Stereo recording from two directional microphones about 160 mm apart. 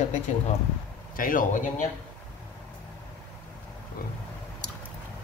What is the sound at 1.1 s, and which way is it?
Speech, 60° left (ahead or behind).